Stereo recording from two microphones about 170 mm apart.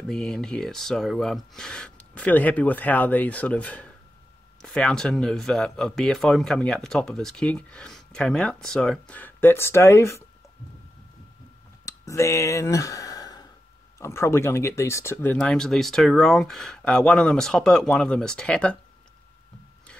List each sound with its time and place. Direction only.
0.0 s speech: 5° left (ahead or behind)
11.8 s sigh: 20° left (ahead or behind)
13.9 s speech: 15° left (ahead or behind)
15.3 s speech: 5° left (ahead or behind)